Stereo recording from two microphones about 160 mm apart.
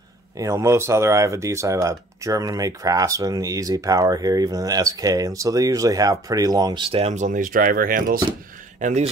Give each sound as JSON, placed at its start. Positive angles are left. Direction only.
{"t": 0.4, "sound": "speech", "side_deg": -20}
{"t": 8.7, "sound": "speech", "side_deg": -45}